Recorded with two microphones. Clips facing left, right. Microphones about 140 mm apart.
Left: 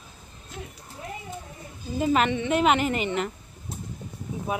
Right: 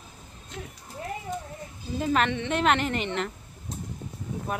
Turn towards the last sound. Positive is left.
turn(degrees=5)  # may be behind; listen again after turning